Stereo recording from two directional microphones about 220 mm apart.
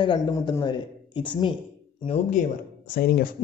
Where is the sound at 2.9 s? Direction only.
40° left (ahead or behind).